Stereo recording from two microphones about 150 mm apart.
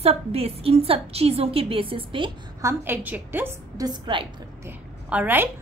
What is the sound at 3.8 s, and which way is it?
Speech, 30° right (ahead or behind).